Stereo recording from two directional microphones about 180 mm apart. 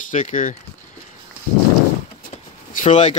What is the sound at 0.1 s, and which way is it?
Speech, 45° left (ahead or behind).